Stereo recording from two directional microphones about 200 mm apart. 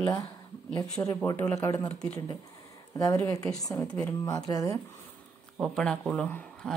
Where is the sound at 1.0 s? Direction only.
15° left (ahead or behind).